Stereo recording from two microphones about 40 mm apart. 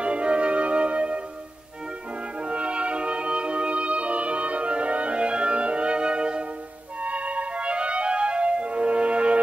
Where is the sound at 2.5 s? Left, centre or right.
Right.